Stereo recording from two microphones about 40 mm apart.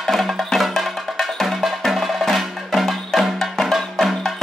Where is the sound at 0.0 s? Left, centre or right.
Centre.